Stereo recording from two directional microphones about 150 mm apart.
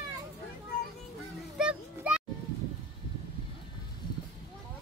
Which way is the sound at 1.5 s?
5° right (ahead or behind).